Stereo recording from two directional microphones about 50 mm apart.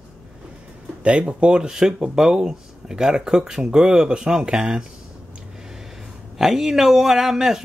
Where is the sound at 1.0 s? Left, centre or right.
Right.